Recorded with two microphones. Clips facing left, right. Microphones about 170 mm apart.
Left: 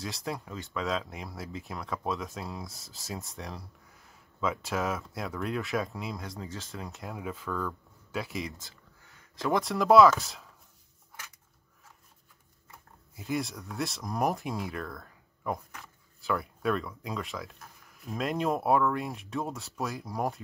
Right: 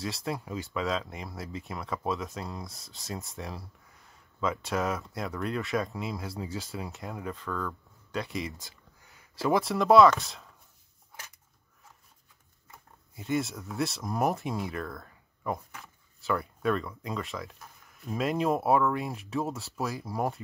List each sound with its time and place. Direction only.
0.0 s speech: centre (ahead or behind)
8.5 s a sound: 15° right (ahead or behind)
9.5 s speech: centre (ahead or behind)
13.1 s speech: centre (ahead or behind)